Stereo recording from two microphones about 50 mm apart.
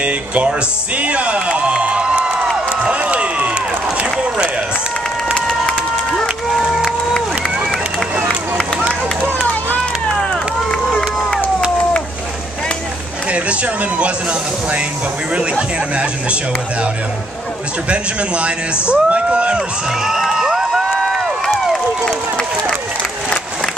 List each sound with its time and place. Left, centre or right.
0.0 s speech: right
2.8 s crowd: right
4.0 s run: right
6.2 s crowd: centre
9.4 s run: left
10.3 s run: centre
13.3 s speech: right
15.3 s speech: right
17.8 s speech: right
20.0 s crowd: centre